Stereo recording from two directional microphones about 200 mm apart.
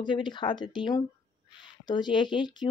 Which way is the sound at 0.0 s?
25° left (ahead or behind).